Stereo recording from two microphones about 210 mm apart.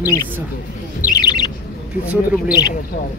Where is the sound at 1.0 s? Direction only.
20° left (ahead or behind).